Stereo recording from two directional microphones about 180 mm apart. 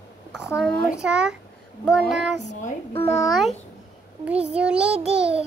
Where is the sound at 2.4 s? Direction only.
40° left (ahead or behind).